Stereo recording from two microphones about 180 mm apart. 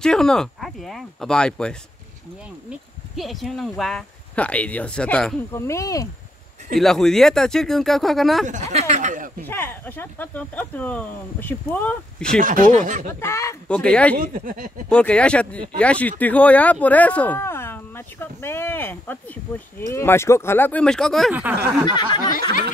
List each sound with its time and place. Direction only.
0.0 s speech: 5° left (ahead or behind)
6.8 s speech: centre (ahead or behind)
8.5 s speech: 40° right (ahead or behind)
9.4 s speech: 10° left (ahead or behind)
12.4 s speech: 50° right (ahead or behind)
13.2 s speech: 15° left (ahead or behind)
13.7 s speech: 5° left (ahead or behind)
14.1 s speech: 50° right (ahead or behind)
14.9 s speech: 5° left (ahead or behind)
21.8 s a sound: 25° left (ahead or behind)